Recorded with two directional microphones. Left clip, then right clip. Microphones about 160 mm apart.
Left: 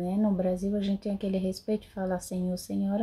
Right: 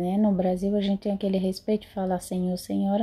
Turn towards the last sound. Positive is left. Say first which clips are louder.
# right 5 dB
turn(degrees=-10)  # may be behind; listen again after turning